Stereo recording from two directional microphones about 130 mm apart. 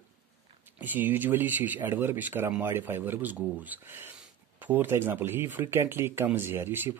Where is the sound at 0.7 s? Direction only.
15° right (ahead or behind).